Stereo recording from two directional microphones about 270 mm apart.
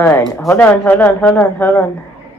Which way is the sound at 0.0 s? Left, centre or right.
Centre.